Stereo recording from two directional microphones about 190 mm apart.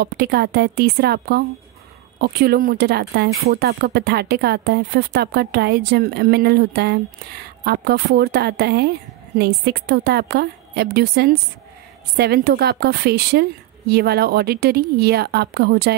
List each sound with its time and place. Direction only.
0.0 s speech: 55° right (ahead or behind)